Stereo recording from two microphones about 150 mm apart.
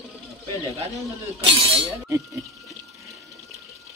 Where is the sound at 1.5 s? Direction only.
35° right (ahead or behind).